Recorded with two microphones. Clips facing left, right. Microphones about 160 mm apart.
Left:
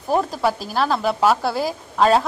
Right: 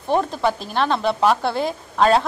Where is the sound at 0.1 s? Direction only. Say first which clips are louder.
Even; 5° left (ahead or behind).